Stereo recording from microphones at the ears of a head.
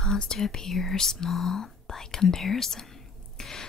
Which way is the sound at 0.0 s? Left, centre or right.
Left.